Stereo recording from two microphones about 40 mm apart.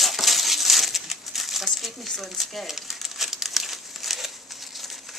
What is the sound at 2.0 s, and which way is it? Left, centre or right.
Crumpling, centre.